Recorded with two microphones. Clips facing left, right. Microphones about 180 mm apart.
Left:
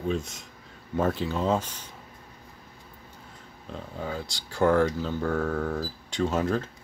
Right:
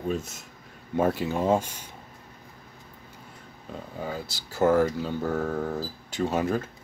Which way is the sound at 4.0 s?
5° right (ahead or behind).